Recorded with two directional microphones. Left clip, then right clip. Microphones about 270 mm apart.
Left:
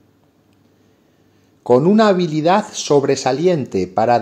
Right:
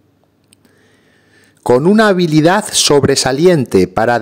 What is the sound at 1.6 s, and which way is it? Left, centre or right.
Speech, right.